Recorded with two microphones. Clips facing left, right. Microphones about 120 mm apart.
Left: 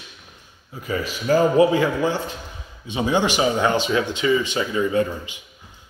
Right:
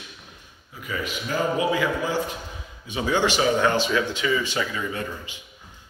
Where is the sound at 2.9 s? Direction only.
20° left (ahead or behind).